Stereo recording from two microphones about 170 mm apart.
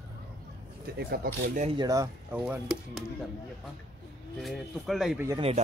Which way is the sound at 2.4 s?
5° right (ahead or behind).